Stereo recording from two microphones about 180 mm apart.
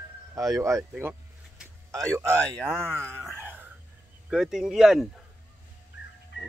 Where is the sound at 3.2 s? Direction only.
10° right (ahead or behind).